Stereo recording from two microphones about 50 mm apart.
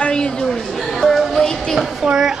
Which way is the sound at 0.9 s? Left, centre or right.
Centre.